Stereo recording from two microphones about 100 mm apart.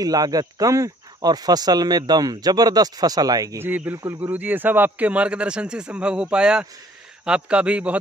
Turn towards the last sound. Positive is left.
turn(degrees=-10)  # may be behind; listen again after turning